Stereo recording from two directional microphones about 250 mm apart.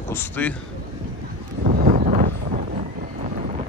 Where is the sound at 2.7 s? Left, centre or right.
Right.